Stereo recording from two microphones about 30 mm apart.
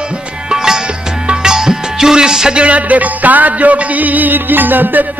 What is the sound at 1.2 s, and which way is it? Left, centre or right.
Music, right.